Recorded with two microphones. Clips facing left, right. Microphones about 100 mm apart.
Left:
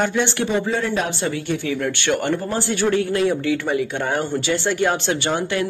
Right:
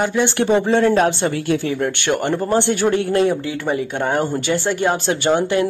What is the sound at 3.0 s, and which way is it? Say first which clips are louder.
Speech: right 2 dB; 35° right (ahead or behind).